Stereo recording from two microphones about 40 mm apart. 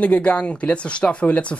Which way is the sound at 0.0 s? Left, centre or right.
Left.